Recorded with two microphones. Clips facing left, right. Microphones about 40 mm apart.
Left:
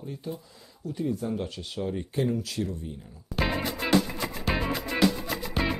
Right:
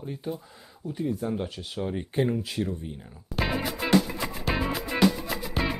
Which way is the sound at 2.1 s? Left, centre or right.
Right.